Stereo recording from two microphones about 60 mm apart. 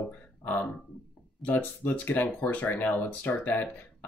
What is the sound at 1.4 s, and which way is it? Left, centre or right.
Speech, left.